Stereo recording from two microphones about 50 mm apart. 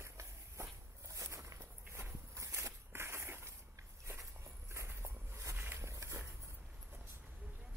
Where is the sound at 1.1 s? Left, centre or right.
Right.